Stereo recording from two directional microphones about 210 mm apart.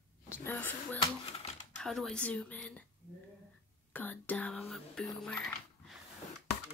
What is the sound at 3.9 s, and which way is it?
Speech, 10° left (ahead or behind).